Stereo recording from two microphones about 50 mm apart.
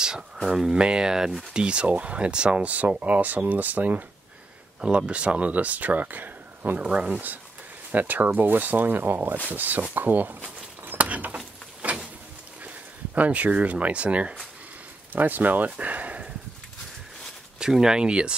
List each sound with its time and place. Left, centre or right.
0.5 s speech: centre; by 4.0 s right
4.8 s speech: right
12.6 s speech: right
15.1 s speech: right
17.6 s speech: centre